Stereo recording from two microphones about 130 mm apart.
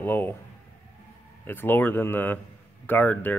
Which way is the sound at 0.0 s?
15° left (ahead or behind).